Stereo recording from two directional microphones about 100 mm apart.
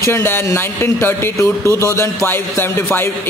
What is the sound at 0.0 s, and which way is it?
Speech, 25° left (ahead or behind).